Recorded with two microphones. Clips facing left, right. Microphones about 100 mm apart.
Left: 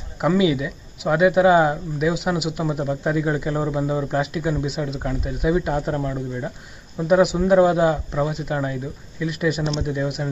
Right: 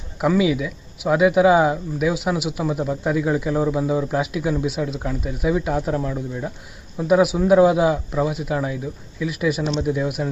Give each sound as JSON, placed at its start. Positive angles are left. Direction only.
{"t": 0.2, "sound": "speech", "side_deg": 0}